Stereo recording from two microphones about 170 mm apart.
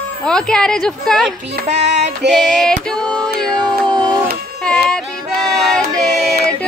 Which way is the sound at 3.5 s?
25° right (ahead or behind).